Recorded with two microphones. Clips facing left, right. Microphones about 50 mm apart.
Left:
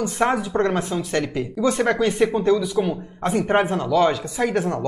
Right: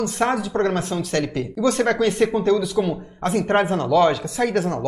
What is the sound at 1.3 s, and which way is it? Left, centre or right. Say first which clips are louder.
Speech: right 1 dB; centre.